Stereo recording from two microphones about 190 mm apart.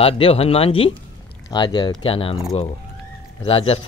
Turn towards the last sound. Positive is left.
turn(degrees=30)  # may be behind; listen again after turning